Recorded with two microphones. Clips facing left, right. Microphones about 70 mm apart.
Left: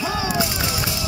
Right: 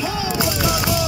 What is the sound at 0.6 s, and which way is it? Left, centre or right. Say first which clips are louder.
Music: right 6 dB; right.